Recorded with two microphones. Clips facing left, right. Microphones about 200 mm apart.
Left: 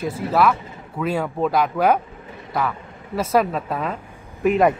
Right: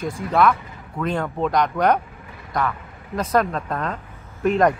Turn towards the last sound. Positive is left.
turn(degrees=5)  # may be behind; listen again after turning